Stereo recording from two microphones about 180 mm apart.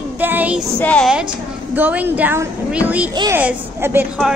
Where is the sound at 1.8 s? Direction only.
10° right (ahead or behind).